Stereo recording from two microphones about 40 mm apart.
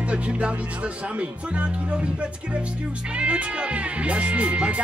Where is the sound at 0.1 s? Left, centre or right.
Right.